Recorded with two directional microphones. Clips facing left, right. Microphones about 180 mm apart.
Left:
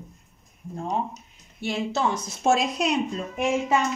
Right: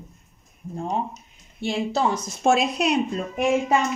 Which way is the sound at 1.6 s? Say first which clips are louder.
Right 3 dB; 30° right (ahead or behind).